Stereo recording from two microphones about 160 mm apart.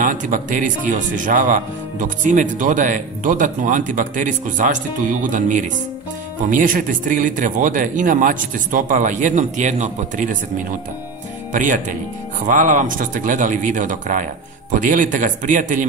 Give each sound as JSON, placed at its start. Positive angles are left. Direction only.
{"t": 0.0, "sound": "speech", "side_deg": -55}
{"t": 11.5, "sound": "speech", "side_deg": -55}